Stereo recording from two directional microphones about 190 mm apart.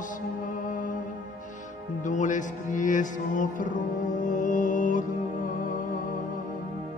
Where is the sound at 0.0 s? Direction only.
45° left (ahead or behind).